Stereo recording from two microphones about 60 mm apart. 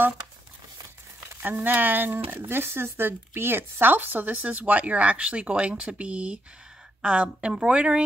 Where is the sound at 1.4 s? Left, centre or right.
Right.